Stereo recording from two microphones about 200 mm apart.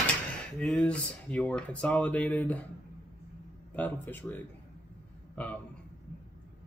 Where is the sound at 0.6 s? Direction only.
5° left (ahead or behind).